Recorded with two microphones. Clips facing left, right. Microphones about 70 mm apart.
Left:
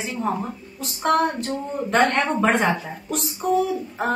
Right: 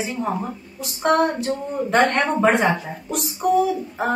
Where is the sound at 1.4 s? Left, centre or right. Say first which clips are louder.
Right 2 dB; centre.